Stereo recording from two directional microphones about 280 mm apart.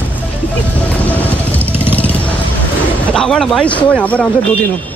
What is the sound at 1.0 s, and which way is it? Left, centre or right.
Vehicle, centre.